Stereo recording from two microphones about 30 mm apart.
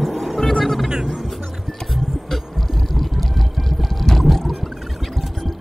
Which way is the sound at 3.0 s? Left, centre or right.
Centre.